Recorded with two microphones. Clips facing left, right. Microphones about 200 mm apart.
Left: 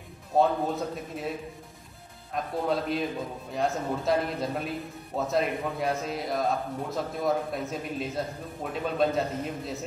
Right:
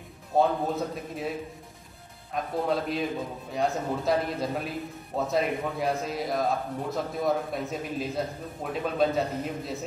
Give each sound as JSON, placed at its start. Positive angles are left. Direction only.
{"t": 0.4, "sound": "a man's voice", "side_deg": 0}
{"t": 2.3, "sound": "a man's voice", "side_deg": 0}